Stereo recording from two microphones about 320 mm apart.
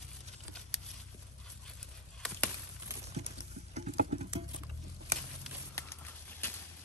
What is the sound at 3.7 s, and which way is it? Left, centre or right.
Patter, right.